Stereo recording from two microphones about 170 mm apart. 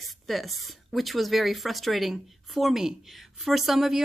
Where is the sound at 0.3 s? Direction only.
Centre (ahead or behind).